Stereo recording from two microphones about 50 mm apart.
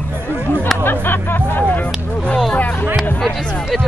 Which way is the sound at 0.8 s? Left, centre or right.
Left.